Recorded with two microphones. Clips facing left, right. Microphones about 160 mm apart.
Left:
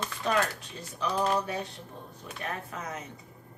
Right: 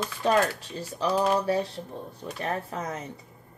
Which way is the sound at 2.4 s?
35° right (ahead or behind).